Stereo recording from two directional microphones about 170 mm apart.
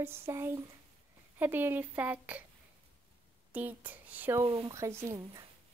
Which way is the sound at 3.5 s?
10° right (ahead or behind).